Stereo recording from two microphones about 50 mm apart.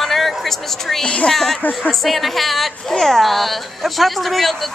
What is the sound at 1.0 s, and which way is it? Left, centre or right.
Speech, centre.